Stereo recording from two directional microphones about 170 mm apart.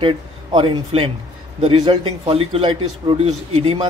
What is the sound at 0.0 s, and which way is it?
A man's voice, 30° right (ahead or behind).